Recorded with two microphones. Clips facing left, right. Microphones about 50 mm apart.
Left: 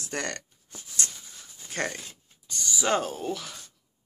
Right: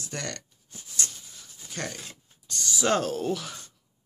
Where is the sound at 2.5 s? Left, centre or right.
Centre.